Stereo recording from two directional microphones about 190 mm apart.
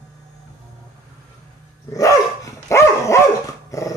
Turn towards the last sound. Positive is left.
turn(degrees=15)  # may be behind; listen again after turning